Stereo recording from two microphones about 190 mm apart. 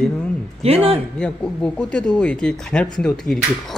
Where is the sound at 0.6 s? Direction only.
30° right (ahead or behind).